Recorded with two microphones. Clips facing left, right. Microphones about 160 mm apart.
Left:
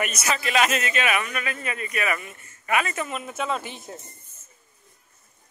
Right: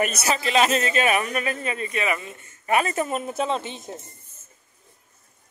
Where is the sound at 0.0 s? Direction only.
35° right (ahead or behind).